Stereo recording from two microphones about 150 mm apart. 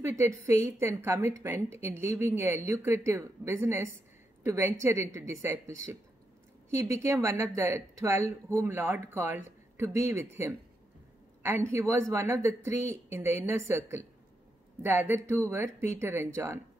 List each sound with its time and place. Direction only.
0.0 s a woman's voice: 20° right (ahead or behind)